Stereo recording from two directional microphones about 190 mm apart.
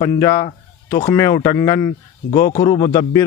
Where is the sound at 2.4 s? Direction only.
40° left (ahead or behind).